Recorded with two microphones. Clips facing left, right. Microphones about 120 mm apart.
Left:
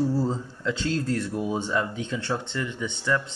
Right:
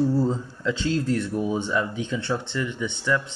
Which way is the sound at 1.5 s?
40° left (ahead or behind).